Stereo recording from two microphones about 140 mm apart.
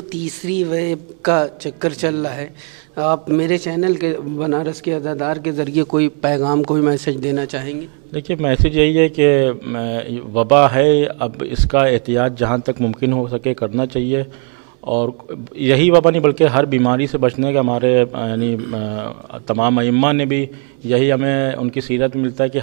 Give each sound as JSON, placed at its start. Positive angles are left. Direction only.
{"t": 0.4, "sound": "a man's voice", "side_deg": -10}